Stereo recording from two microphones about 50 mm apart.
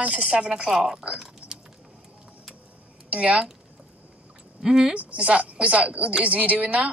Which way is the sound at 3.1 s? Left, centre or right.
Right.